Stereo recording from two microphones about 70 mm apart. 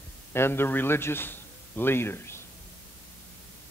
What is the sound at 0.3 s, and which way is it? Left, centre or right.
A man's voice, left.